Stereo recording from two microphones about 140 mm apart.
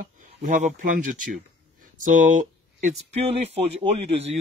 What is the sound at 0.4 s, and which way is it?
Speech, 60° right (ahead or behind).